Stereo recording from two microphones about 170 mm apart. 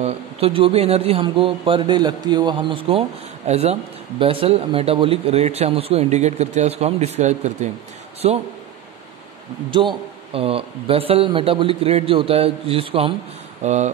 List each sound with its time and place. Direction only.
0.0 s speech: 35° right (ahead or behind)
9.7 s speech: 30° right (ahead or behind)